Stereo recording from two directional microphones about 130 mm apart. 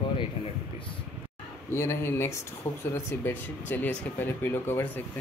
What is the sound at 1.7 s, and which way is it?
Speech, 20° left (ahead or behind).